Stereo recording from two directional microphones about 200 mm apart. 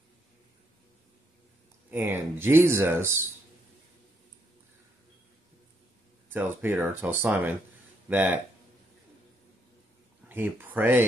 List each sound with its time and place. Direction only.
1.9 s speech: 10° right (ahead or behind)
6.2 s speech: 10° right (ahead or behind)
10.2 s speech: 10° right (ahead or behind)